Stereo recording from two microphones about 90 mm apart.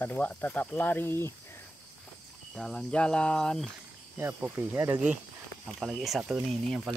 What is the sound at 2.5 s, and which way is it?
Speech, 5° left (ahead or behind).